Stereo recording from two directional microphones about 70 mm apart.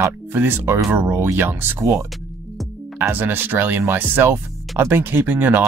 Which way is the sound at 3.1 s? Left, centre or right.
Right.